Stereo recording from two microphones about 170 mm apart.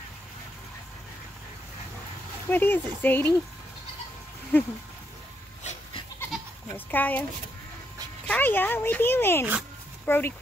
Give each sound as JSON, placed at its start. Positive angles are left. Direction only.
{"t": 2.5, "sound": "speech", "side_deg": 10}
{"t": 4.5, "sound": "speech", "side_deg": 10}
{"t": 5.6, "sound": "goat", "side_deg": 40}
{"t": 6.9, "sound": "speech", "side_deg": 10}
{"t": 8.3, "sound": "speech", "side_deg": 10}